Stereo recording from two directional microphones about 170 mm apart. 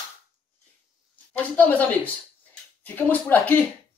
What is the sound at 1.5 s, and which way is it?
A woman's voice, 10° left (ahead or behind).